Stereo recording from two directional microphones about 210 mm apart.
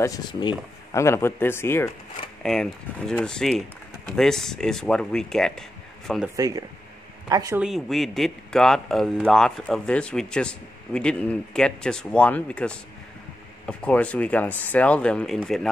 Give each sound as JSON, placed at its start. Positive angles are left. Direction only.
{"t": 0.0, "sound": "speech", "side_deg": 20}
{"t": 6.2, "sound": "speech", "side_deg": -15}
{"t": 7.6, "sound": "speech", "side_deg": 0}